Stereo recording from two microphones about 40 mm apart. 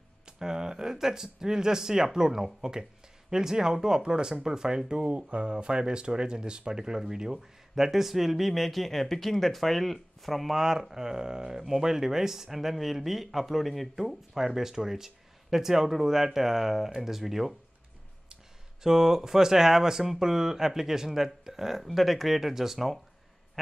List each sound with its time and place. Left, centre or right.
0.2 s speech: centre
18.8 s speech: centre